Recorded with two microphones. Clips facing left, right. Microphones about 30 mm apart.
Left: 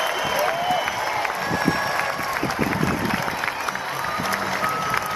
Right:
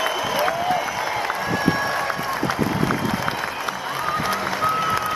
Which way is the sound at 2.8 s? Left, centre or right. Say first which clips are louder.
Right 1 dB; right.